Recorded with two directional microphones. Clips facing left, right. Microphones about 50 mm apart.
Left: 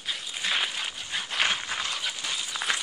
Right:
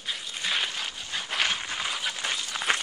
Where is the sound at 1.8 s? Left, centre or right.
Centre.